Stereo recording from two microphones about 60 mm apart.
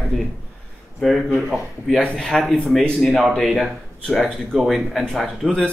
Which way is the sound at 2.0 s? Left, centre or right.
Centre.